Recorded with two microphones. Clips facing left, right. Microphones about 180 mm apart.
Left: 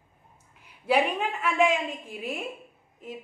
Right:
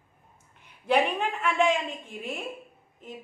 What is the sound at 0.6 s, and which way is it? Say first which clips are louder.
A woman's voice: even; 5° left (ahead or behind).